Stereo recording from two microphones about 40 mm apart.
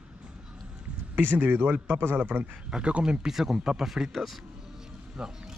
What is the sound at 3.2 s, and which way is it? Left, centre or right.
Speech, centre.